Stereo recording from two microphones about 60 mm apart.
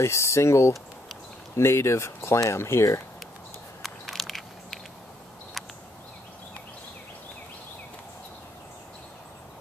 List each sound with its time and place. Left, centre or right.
0.0 s speech: left
3.8 s crushing: centre